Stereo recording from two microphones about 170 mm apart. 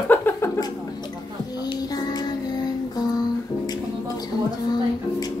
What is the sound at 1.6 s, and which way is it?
Music, 25° left (ahead or behind).